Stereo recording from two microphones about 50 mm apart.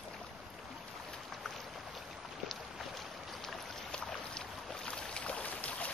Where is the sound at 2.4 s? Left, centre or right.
Centre; by 5.9 s left.